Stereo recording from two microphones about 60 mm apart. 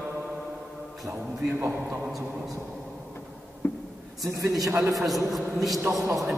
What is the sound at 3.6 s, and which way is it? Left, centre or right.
Speech, left.